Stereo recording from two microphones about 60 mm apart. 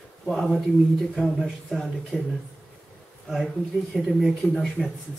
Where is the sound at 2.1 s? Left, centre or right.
Left.